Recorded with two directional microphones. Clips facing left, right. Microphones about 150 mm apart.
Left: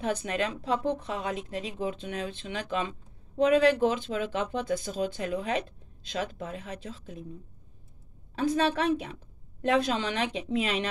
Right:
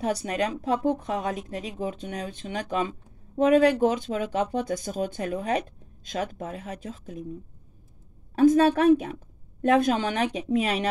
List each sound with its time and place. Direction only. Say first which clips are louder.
0.0 s speech: right 3 dB; 40° right (ahead or behind)
8.4 s speech: right 8 dB; 45° right (ahead or behind)